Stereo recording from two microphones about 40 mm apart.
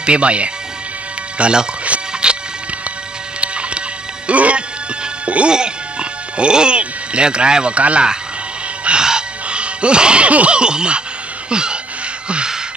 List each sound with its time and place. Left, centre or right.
0.0 s a man's voice: right
2.2 s music: right
5.5 s speech: right
8.8 s music: right
11.5 s a sound: right